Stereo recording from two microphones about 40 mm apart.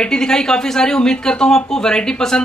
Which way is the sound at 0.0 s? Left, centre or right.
Centre.